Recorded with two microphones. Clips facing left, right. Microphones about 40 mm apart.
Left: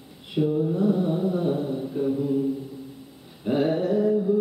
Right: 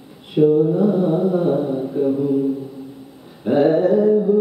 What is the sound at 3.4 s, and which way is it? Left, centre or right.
Mantra, centre.